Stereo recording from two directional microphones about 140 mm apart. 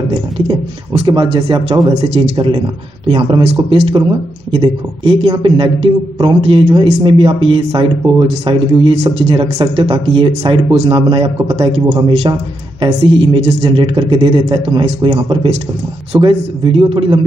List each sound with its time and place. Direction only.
0.5 s speech: 35° right (ahead or behind)